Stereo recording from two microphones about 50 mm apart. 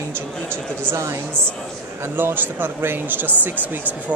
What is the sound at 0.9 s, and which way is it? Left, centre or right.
Speech, right.